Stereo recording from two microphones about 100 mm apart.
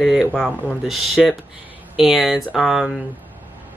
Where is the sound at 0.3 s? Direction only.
10° left (ahead or behind).